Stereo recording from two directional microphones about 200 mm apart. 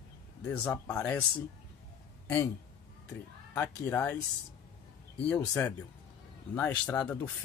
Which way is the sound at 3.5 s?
10° left (ahead or behind).